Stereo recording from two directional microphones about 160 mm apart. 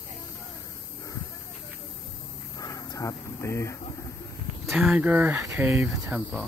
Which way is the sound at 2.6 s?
20° left (ahead or behind).